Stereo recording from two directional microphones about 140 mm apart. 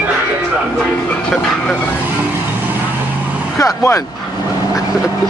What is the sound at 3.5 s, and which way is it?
Speech, 20° left (ahead or behind).